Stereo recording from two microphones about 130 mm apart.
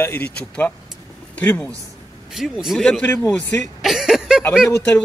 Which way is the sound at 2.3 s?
5° right (ahead or behind).